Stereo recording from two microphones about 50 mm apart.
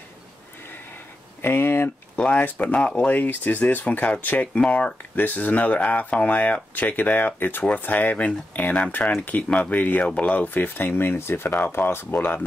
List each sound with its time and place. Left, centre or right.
1.4 s a sound: left
2.1 s speech: left
4.6 s speech: left
5.1 s speech: left